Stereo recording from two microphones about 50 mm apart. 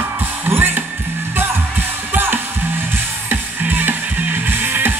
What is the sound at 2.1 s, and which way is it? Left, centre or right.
Music, right.